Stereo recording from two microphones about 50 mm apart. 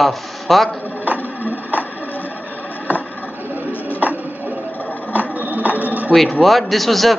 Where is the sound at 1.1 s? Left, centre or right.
Right.